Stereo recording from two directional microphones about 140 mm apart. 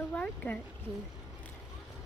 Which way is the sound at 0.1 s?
10° left (ahead or behind).